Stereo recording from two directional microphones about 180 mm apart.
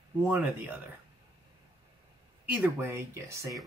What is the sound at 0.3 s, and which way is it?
Speech, 10° right (ahead or behind).